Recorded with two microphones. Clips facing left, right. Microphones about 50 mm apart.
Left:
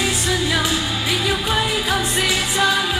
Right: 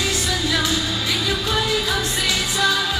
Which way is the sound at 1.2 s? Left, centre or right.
Left.